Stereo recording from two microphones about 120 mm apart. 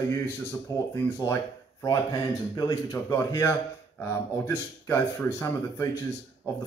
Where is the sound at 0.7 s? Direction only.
30° left (ahead or behind).